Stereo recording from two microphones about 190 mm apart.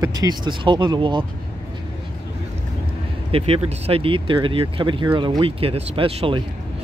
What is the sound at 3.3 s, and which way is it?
Speech, 30° right (ahead or behind).